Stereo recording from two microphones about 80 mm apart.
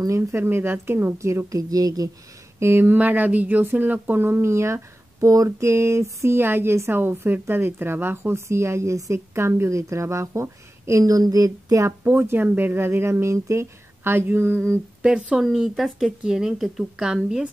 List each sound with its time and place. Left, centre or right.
0.0 s speech: right
2.6 s speech: right
12.0 s speech: right
15.0 s speech: centre